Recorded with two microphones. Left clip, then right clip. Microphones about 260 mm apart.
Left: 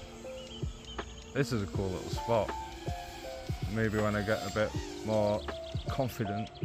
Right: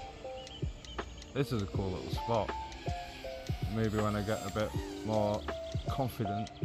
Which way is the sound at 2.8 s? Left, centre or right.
Left.